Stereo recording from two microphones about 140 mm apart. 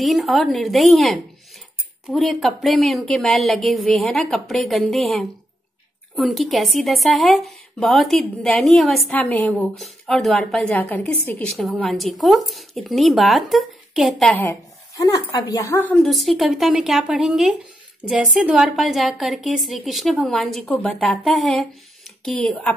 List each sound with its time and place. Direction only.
0.0 s a woman's voice: centre (ahead or behind)
9.1 s a woman's voice: 10° left (ahead or behind)
11.8 s a woman's voice: centre (ahead or behind)
14.4 s speech: 20° left (ahead or behind)
15.8 s a woman's voice: 5° left (ahead or behind)